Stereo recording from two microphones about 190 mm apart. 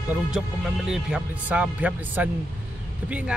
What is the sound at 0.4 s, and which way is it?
Speech, centre (ahead or behind).